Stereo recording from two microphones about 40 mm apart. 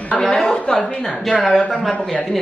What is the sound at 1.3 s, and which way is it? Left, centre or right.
A woman's voice, centre.